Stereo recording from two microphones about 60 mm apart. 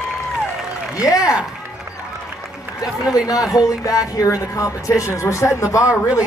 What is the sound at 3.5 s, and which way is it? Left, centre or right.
Speech, left.